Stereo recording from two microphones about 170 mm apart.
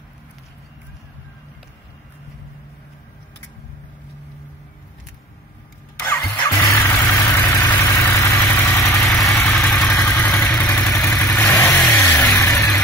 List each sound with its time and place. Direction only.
5.9 s engine starting: 10° left (ahead or behind)
7.6 s vehicle: 10° left (ahead or behind)
9.0 s vehicle: centre (ahead or behind)
9.9 s vehicle: 15° left (ahead or behind)